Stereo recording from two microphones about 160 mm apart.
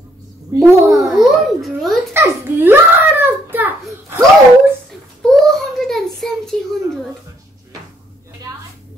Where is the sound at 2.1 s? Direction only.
15° right (ahead or behind).